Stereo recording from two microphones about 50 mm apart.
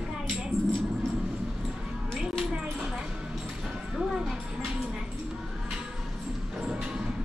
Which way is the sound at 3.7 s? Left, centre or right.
Centre.